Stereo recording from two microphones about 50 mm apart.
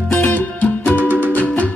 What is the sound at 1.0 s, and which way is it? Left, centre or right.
Music, right.